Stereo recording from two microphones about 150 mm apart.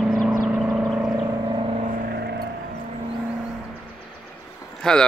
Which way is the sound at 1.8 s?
85° right.